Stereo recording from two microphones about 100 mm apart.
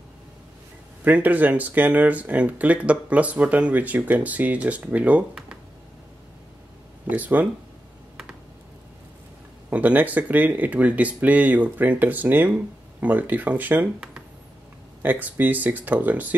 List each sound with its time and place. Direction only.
1.0 s speech: 15° right (ahead or behind)
7.1 s speech: 15° right (ahead or behind)
9.7 s speech: 15° right (ahead or behind)